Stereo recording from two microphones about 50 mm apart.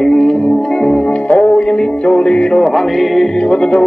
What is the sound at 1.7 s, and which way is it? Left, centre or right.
Music, centre.